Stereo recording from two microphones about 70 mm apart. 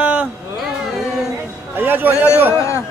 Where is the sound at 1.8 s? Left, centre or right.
Right.